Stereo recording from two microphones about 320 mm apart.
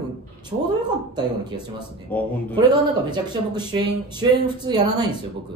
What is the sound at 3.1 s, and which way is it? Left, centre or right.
Speech, centre.